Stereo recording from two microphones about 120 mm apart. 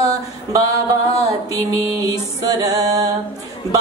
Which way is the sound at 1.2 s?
30° right (ahead or behind).